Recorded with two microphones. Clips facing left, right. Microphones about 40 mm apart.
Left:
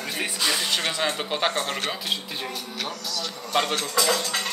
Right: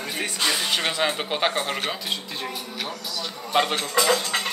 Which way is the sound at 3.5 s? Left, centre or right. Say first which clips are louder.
Right 2 dB; centre.